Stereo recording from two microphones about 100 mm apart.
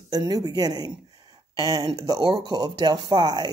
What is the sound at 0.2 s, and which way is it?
Speech, 40° right (ahead or behind).